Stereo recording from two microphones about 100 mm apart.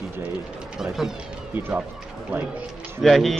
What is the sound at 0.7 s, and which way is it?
Speech, 5° right (ahead or behind).